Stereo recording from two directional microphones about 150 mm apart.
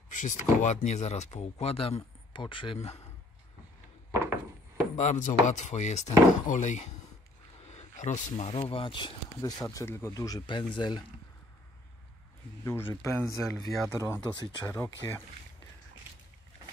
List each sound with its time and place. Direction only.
0.1 s speech: 55° left (ahead or behind)
4.1 s a sound: 15° right (ahead or behind)
4.9 s speech: 55° left (ahead or behind); by 11.1 s 30° left (ahead or behind)
12.6 s speech: 15° left (ahead or behind)